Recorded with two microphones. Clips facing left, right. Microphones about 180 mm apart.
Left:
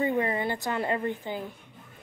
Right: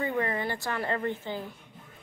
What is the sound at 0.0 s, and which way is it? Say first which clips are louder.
A woman's voice: left 3 dB; 20° left (ahead or behind).